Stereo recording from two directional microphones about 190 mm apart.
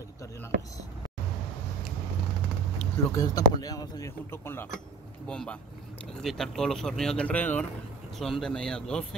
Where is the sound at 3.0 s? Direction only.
20° left (ahead or behind).